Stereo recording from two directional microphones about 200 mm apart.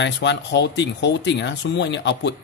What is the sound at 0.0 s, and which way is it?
Speech, 60° left (ahead or behind).